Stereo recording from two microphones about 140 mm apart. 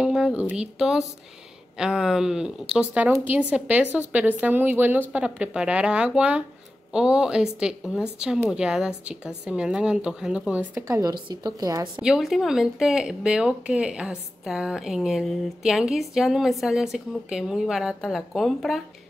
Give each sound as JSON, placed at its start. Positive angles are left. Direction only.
{"t": 0.0, "sound": "a woman's voice", "side_deg": -5}
{"t": 12.0, "sound": "speech", "side_deg": -5}